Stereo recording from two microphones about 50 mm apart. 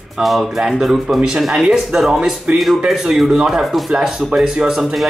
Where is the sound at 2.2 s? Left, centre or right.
Right.